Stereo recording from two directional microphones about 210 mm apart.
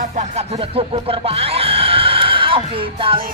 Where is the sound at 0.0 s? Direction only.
35° right (ahead or behind).